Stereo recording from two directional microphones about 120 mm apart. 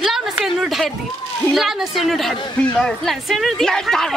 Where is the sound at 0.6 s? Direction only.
Centre (ahead or behind).